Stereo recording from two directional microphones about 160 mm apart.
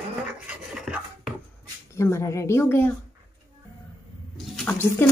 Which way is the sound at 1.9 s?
15° left (ahead or behind).